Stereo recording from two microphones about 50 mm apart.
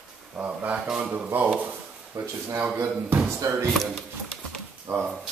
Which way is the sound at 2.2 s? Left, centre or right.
Right.